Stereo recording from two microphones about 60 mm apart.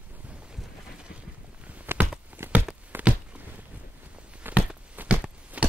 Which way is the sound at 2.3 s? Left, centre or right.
Right.